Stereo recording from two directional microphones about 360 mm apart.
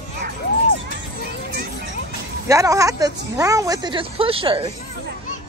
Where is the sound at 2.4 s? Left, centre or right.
Centre.